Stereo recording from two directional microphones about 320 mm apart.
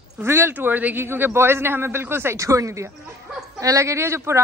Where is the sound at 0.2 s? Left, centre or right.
Centre.